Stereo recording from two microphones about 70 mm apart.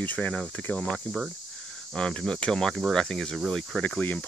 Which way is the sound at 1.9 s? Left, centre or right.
Centre.